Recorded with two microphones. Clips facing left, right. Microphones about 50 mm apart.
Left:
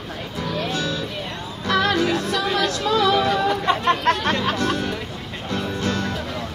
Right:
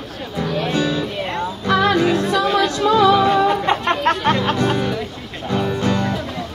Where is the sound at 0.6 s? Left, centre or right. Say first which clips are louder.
Right 5 dB; right.